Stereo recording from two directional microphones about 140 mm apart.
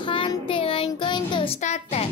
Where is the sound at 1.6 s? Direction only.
55° left (ahead or behind).